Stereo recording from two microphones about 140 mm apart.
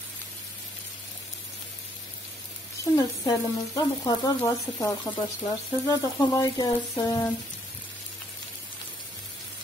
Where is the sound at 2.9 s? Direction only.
25° left (ahead or behind).